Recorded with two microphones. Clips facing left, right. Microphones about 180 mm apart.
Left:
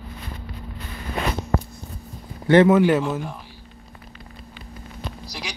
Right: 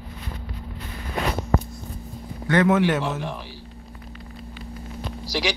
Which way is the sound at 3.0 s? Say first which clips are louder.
Left 2 dB; 80° right.